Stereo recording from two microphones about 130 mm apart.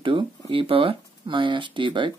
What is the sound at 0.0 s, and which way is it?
Speech, 40° right (ahead or behind).